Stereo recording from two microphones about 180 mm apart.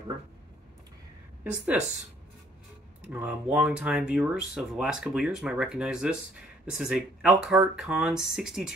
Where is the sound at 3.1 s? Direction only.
10° right (ahead or behind).